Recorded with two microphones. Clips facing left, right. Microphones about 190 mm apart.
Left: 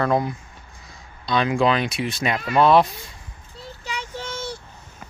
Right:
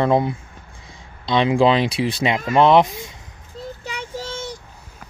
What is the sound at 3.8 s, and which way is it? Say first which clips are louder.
Child singing: right 1 dB; 55° right (ahead or behind).